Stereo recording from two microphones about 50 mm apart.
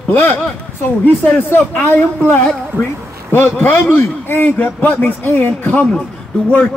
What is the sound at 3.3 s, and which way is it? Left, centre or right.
A man's voice, left.